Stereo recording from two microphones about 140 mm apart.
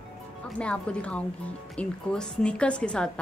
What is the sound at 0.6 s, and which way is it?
A woman's voice, 10° left (ahead or behind).